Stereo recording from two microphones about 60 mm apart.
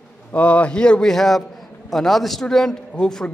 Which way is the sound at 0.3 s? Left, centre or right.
Left.